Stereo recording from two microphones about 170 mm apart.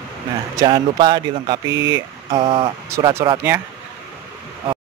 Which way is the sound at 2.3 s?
30° right (ahead or behind).